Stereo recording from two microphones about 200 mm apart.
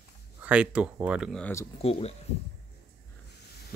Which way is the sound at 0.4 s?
5° right (ahead or behind).